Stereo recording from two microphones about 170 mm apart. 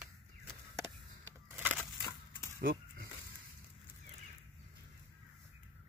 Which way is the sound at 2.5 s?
65° right (ahead or behind).